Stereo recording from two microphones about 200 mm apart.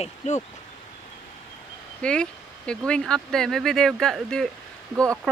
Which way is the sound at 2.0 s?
5° left (ahead or behind).